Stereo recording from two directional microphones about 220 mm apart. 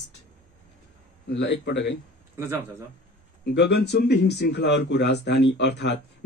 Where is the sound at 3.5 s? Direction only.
50° left (ahead or behind).